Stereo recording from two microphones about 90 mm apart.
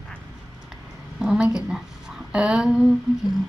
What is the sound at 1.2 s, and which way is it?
A woman's voice, 10° right (ahead or behind).